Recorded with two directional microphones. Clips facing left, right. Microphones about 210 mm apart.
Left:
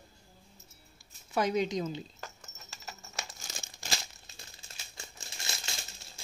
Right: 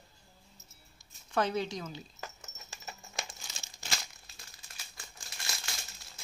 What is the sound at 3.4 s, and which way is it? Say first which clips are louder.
Crumpling: left 4 dB; 45° left (ahead or behind).